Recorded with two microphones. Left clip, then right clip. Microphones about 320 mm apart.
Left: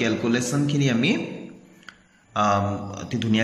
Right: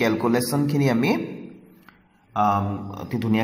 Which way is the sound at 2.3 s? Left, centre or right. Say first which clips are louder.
Even; centre.